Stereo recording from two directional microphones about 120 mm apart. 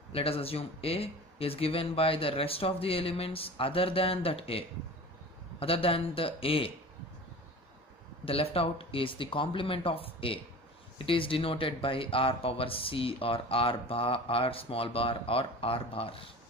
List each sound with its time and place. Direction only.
0.1 s speech: 55° left (ahead or behind)
8.3 s speech: 50° left (ahead or behind)